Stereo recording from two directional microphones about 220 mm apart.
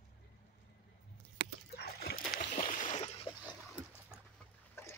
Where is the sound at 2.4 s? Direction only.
35° left (ahead or behind).